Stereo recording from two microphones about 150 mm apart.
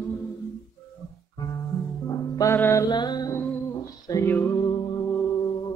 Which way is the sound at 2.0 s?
25° left (ahead or behind).